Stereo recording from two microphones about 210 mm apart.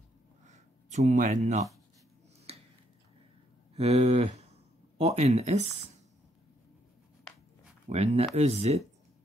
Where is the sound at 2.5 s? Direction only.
30° right (ahead or behind).